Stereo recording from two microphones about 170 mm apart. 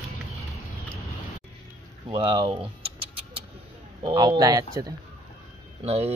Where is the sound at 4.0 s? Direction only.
25° right (ahead or behind).